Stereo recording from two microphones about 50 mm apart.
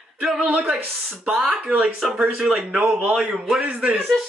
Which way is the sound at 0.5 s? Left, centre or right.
Centre.